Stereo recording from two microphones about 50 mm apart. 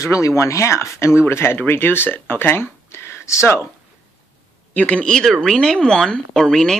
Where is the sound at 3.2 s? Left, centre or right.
Left.